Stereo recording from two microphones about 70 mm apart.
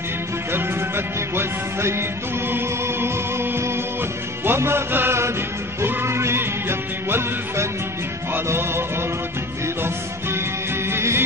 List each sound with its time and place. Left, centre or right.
0.5 s music: right
10.9 s music: right